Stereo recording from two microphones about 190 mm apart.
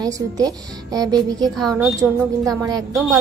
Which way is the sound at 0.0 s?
20° right (ahead or behind).